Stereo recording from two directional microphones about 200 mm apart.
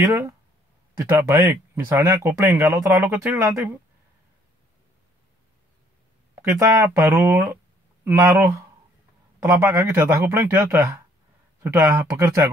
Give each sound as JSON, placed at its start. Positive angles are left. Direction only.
{"t": 0.0, "sound": "speech", "side_deg": -15}
{"t": 6.3, "sound": "speech", "side_deg": -15}